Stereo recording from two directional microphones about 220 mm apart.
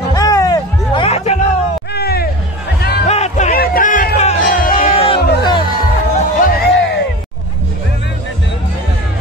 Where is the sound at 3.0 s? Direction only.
30° left (ahead or behind).